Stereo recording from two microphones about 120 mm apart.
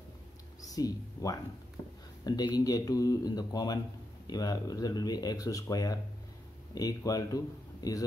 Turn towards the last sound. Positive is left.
turn(degrees=30)  # may be behind; listen again after turning